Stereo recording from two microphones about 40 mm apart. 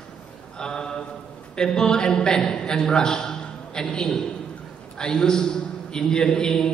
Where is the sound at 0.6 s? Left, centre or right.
Centre.